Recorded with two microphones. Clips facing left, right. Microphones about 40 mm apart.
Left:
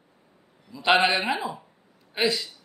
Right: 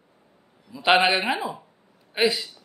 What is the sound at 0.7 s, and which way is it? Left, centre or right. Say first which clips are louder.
Speech: right 2 dB; centre.